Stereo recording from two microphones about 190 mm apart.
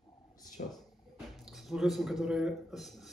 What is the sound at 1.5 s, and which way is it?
Speech, centre (ahead or behind).